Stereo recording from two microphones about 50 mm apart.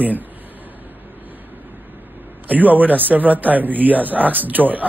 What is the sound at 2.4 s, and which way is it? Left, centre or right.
A man's voice, right.